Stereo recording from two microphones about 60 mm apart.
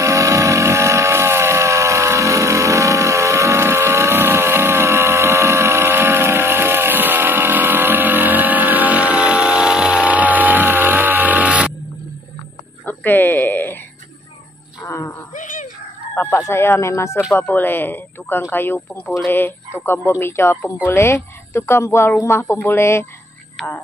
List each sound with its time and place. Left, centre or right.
0.0 s vehicle: right
12.8 s a sound: left
14.9 s a sound: left
16.4 s speech: left
17.4 s speech: left
23.6 s speech: centre